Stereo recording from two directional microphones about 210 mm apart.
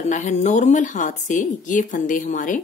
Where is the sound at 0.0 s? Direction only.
35° left (ahead or behind).